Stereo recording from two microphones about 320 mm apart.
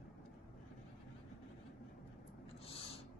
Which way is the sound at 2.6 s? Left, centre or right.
Centre.